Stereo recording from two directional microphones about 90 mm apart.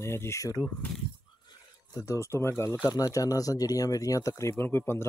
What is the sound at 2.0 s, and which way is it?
Speech, 35° left (ahead or behind).